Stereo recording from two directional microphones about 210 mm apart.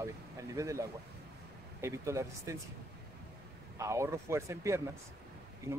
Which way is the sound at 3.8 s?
15° right (ahead or behind).